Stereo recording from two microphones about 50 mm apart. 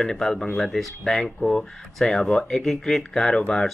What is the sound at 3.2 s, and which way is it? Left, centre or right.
Speech, centre.